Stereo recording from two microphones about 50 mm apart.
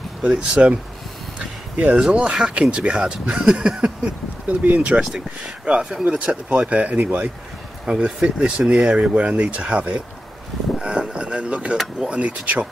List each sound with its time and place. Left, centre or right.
0.2 s speech: right
1.4 s a sound: right
2.1 s speech: centre
5.4 s speech: centre
6.0 s speech: right
7.8 s speech: centre
10.8 s a sound: centre
12.1 s speech: right